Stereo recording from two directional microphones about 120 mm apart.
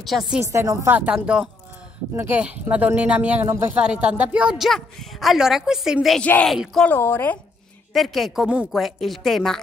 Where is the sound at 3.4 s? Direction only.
20° right (ahead or behind).